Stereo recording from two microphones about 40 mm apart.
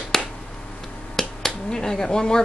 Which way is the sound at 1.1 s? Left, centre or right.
Centre.